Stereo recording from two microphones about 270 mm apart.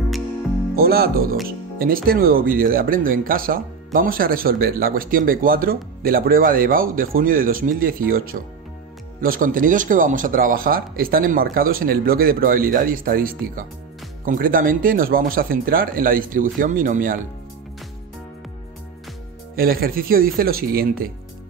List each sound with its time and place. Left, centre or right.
0.7 s speech: right
19.5 s speech: right